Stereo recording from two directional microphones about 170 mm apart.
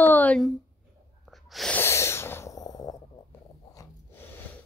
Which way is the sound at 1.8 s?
15° left (ahead or behind).